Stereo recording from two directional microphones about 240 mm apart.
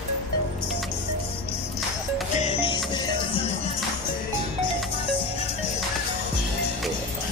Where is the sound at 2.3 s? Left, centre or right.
Left.